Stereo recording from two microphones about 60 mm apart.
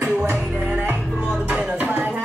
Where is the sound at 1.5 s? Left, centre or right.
Right.